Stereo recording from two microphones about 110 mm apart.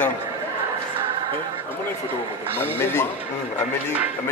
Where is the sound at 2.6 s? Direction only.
20° left (ahead or behind).